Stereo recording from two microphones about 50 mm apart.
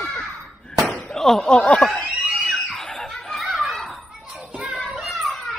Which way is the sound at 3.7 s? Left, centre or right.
Centre.